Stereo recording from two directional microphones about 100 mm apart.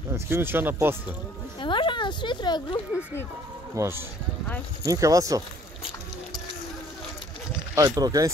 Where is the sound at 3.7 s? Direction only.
25° right (ahead or behind).